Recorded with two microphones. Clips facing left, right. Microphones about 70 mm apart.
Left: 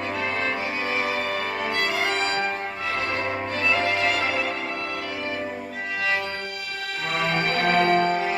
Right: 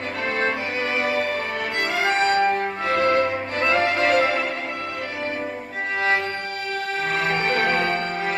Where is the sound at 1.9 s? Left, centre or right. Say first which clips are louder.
Right 4 dB; right.